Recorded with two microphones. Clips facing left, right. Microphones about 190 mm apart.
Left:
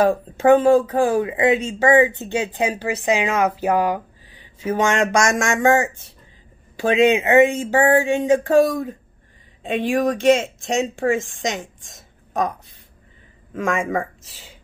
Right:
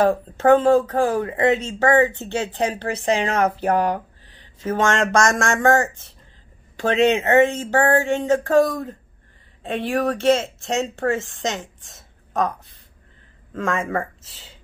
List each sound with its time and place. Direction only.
0.0 s speech: 10° left (ahead or behind)